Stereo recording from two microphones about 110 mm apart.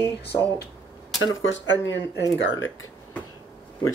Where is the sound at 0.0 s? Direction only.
20° left (ahead or behind).